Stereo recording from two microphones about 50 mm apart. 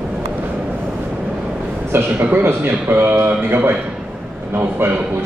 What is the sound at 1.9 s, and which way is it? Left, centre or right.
Speech, right.